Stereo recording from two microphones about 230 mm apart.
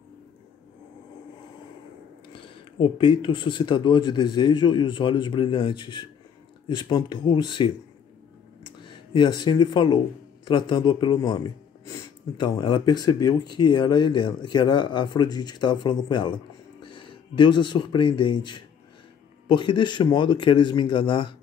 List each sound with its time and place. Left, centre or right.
2.3 s speech: left
8.8 s speech: left